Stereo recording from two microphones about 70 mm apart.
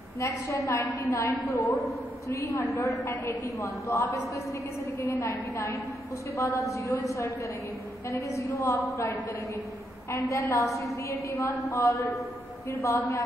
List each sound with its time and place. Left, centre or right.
0.2 s a woman's voice: left
6.3 s a woman's voice: left
10.3 s a woman's voice: left